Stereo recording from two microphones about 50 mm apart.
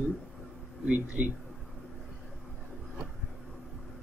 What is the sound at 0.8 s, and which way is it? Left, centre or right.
Speech, right.